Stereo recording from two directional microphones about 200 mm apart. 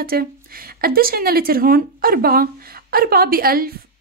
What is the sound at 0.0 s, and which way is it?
A woman's voice, 50° right (ahead or behind).